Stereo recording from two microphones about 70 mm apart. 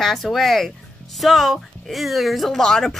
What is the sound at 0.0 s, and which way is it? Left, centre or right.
A woman's voice, centre.